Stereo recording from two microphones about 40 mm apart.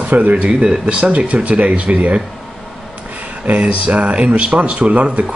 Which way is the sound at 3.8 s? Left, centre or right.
Right.